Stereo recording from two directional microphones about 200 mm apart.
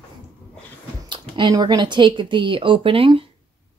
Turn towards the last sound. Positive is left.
turn(degrees=-25)  # may be behind; listen again after turning